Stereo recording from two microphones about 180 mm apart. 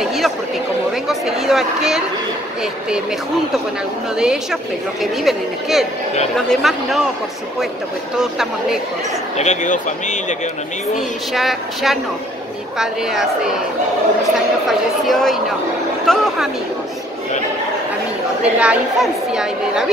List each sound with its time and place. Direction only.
0.0 s chatter: centre (ahead or behind)
1.0 s a sound: centre (ahead or behind)
4.2 s a woman's voice: 5° right (ahead or behind)
8.2 s a woman's voice: 5° right (ahead or behind)
9.4 s speech: 40° left (ahead or behind)
11.3 s a woman's voice: centre (ahead or behind)
14.7 s a woman's voice: centre (ahead or behind)
18.4 s a woman's voice: 5° right (ahead or behind)